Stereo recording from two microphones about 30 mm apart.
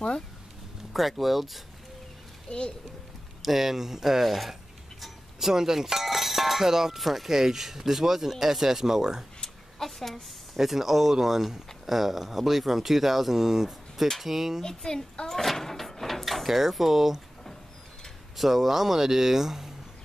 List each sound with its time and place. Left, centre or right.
0.9 s speech: centre
2.5 s a child's voice: left
3.4 s speech: centre
5.5 s speech: centre
5.9 s speech: centre
7.0 s speech: centre
9.8 s a woman's voice: centre
10.6 s speech: centre
14.6 s a child's voice: left
15.4 s a sound: centre
16.4 s speech: centre
18.3 s speech: centre